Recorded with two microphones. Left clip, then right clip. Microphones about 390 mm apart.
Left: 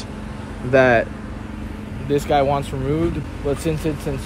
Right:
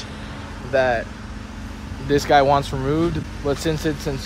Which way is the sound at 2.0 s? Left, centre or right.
Centre.